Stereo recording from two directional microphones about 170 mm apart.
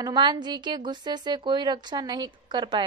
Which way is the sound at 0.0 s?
25° right (ahead or behind).